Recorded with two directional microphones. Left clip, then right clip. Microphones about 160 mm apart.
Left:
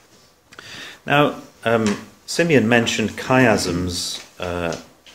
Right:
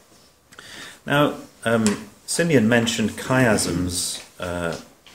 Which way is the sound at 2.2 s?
10° left (ahead or behind).